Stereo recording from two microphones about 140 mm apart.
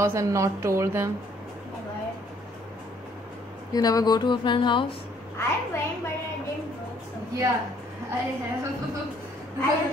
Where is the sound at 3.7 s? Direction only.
30° left (ahead or behind).